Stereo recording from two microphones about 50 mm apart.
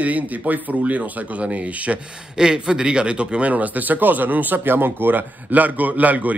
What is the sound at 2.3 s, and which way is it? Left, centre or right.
Speech, centre.